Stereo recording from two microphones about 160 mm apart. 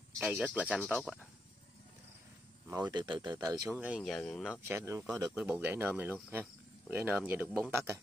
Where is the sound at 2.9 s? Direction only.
30° right (ahead or behind).